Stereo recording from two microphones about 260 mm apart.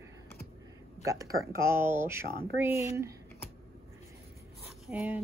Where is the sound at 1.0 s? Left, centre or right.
Centre.